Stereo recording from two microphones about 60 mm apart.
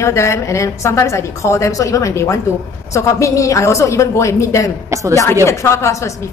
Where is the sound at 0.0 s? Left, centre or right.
Left.